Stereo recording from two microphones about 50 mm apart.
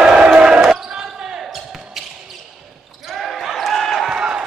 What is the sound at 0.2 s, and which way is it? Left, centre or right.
Basketball bounce, centre.